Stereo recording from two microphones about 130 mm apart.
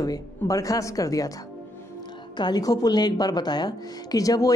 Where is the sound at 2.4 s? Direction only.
30° left (ahead or behind).